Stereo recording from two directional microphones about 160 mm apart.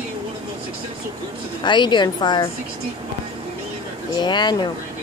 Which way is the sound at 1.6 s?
30° left (ahead or behind).